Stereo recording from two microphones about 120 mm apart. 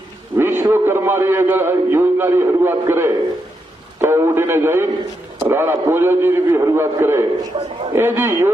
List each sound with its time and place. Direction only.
0.4 s a man's voice: 20° right (ahead or behind)
7.5 s a man's voice: 50° right (ahead or behind)
7.9 s a man's voice: 20° right (ahead or behind)